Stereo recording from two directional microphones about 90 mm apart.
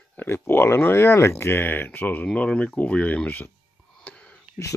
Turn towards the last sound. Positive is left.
turn(degrees=10)  # may be behind; listen again after turning